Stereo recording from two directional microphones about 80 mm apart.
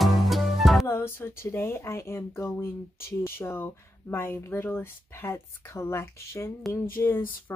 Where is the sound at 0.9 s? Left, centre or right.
Left.